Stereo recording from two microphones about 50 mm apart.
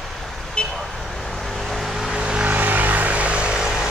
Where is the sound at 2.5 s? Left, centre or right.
Right; by 3.9 s centre.